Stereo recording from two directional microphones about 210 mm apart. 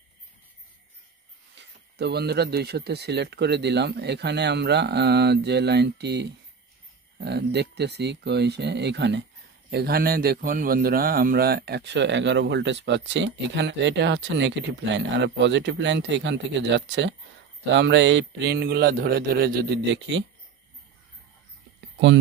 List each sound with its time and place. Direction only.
1.6 s a man's voice: 50° right (ahead or behind)